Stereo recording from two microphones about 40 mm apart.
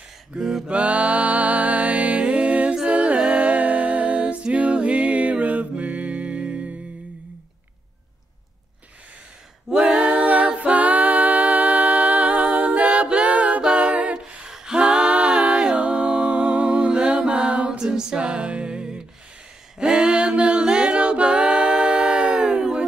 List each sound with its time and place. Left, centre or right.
0.4 s mantra: centre
0.7 s music: right
9.7 s a capella: right
10.6 s music: right
13.6 s a capella: right
17.6 s music: centre
19.8 s a capella: right